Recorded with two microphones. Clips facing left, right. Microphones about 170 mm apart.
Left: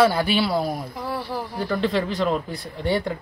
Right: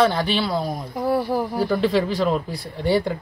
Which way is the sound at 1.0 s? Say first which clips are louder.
Right 12 dB; 45° right (ahead or behind).